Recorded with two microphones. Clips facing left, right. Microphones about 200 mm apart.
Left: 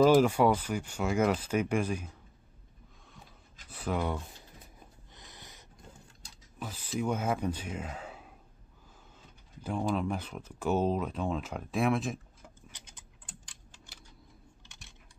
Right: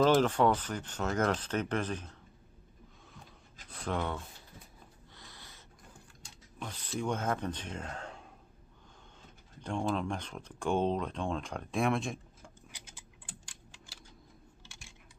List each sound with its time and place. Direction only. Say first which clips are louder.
0.0 s speech: left 3 dB; 10° left (ahead or behind)
3.1 s a sound: left 1 dB; 5° left (ahead or behind)
5.1 s snort: left 2 dB; 20° left (ahead or behind)
6.6 s speech: left 3 dB; 5° left (ahead or behind)
9.6 s speech: left 2 dB; 5° left (ahead or behind)
12.7 s tick-tock: right 1 dB; 10° right (ahead or behind)
14.6 s computer keyboard: right 1 dB; 10° right (ahead or behind)